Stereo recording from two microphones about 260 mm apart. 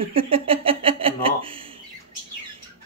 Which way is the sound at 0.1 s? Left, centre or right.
Right.